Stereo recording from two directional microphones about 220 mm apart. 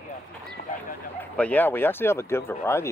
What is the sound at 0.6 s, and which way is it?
Horse, 40° left (ahead or behind).